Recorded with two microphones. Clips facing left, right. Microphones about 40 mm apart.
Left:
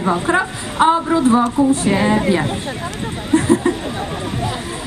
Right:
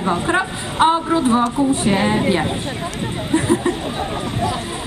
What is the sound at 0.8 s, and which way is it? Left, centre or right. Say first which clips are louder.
A woman's voice: left 2 dB; right.